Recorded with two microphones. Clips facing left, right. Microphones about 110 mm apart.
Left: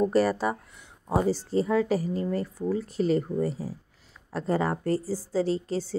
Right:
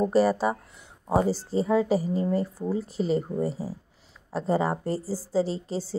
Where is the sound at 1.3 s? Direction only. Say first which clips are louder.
Right 1 dB; 30° right (ahead or behind).